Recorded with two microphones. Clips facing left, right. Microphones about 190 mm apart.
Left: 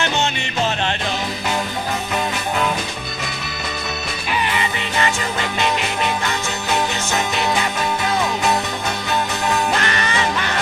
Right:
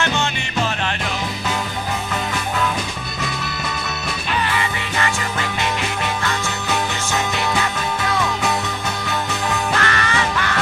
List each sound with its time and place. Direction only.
4.5 s music: 20° left (ahead or behind)
9.8 s music: 20° left (ahead or behind)